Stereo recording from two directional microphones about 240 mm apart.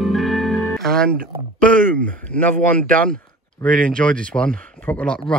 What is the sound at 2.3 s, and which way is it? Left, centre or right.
Speech, centre.